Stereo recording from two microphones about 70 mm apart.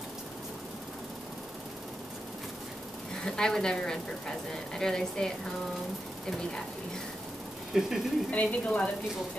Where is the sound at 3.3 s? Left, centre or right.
Centre.